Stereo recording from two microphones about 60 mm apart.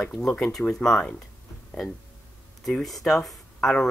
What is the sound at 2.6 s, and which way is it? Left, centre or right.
Speech, centre.